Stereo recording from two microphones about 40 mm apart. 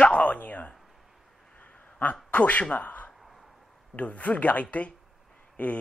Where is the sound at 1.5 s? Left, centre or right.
Left.